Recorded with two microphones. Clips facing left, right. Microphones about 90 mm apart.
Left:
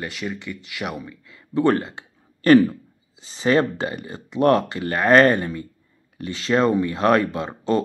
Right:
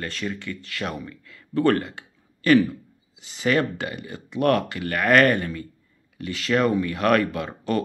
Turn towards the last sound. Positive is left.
turn(degrees=25)  # may be behind; listen again after turning